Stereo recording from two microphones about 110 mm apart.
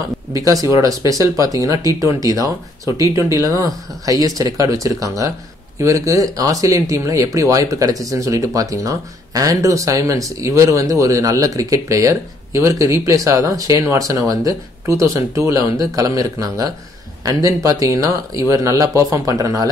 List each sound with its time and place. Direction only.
0.3 s speech: 30° right (ahead or behind)